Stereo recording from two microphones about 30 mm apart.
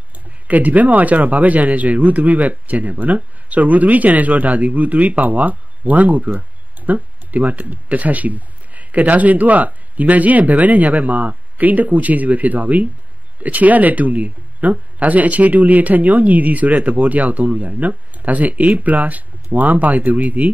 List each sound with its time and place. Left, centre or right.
0.5 s speech: right